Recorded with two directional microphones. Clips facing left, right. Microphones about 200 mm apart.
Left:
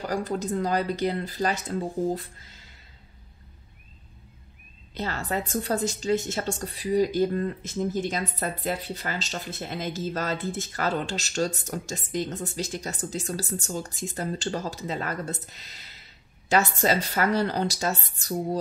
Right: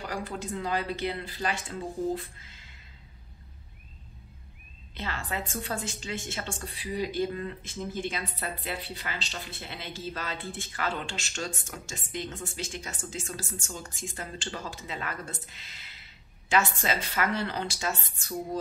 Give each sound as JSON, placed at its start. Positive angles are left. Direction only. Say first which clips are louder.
{"t": 0.0, "sound": "a woman's voice", "louder": "left 7 dB", "side_deg": 40}
{"t": 4.9, "sound": "a woman's voice", "louder": "left 6 dB", "side_deg": 40}